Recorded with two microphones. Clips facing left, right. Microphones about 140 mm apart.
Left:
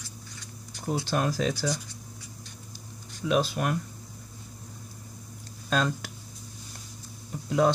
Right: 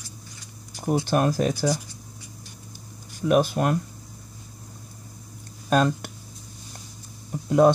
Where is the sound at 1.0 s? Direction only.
50° right (ahead or behind).